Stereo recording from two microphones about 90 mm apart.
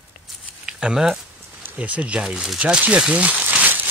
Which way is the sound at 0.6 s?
10° right (ahead or behind).